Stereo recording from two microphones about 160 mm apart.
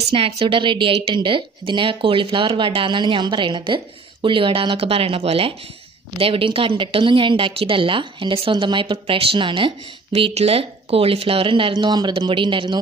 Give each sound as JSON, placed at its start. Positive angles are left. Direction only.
{"t": 0.1, "sound": "speech", "side_deg": -35}